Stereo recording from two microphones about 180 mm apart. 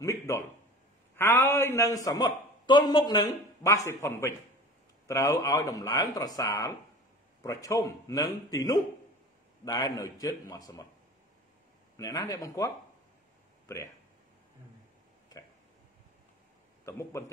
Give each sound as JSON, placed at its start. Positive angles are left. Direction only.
{"t": 0.0, "sound": "a sound", "side_deg": 15}
{"t": 1.1, "sound": "a man's voice", "side_deg": 10}
{"t": 12.0, "sound": "speech", "side_deg": 20}